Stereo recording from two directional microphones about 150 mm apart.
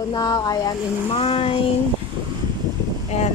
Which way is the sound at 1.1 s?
40° left (ahead or behind).